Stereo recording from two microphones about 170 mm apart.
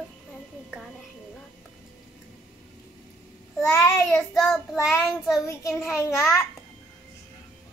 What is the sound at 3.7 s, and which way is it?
A child's voice, 15° left (ahead or behind).